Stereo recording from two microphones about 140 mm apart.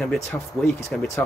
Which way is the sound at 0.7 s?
55° left (ahead or behind).